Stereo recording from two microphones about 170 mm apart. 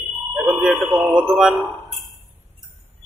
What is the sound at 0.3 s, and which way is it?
Bell, 10° right (ahead or behind).